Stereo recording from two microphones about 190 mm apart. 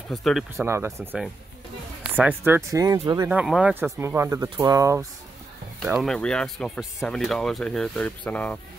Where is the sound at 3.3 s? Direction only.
5° right (ahead or behind).